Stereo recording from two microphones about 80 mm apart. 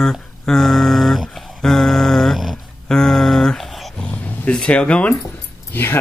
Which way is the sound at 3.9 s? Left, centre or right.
Centre.